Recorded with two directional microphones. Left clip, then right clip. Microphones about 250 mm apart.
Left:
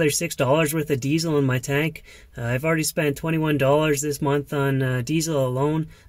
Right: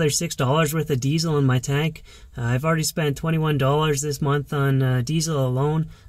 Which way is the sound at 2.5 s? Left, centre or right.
Centre.